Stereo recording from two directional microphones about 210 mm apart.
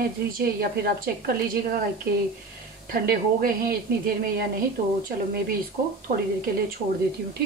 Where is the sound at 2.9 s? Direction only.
45° right (ahead or behind).